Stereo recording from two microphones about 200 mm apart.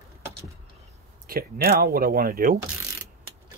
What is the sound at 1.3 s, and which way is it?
Speech, 45° right (ahead or behind).